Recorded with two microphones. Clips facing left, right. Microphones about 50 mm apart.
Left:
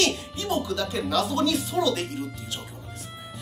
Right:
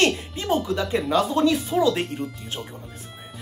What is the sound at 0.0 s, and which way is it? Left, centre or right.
Speech, right.